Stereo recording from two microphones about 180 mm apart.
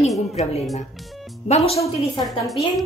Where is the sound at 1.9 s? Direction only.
20° left (ahead or behind).